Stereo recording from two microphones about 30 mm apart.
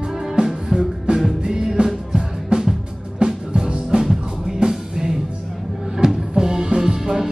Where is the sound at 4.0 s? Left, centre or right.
Centre.